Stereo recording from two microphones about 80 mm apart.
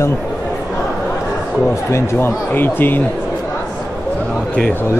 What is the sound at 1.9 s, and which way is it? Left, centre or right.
Speech, left.